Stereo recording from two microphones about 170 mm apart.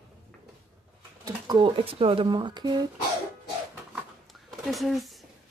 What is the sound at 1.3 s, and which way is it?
Speech, 25° right (ahead or behind).